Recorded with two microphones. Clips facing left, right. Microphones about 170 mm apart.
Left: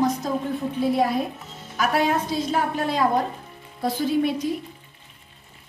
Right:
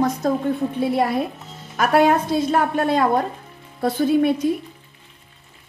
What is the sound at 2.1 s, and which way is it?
A woman's voice, 55° right (ahead or behind).